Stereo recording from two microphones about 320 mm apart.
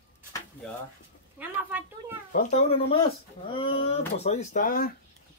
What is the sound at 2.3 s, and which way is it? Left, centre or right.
Speech, left.